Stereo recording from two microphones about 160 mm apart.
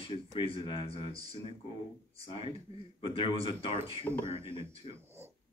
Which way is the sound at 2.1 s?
35° left (ahead or behind).